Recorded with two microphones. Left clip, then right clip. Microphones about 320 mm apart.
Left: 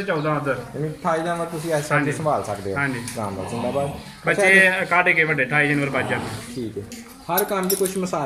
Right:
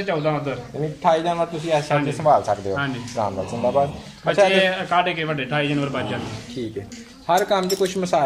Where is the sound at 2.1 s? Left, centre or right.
Right.